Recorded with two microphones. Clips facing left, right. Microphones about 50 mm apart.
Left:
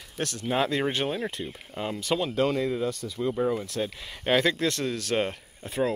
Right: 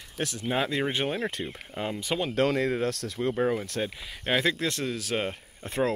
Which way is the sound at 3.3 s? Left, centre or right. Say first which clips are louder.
Even; centre.